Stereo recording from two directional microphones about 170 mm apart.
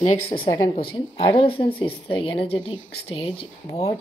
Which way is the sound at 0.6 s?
30° left (ahead or behind).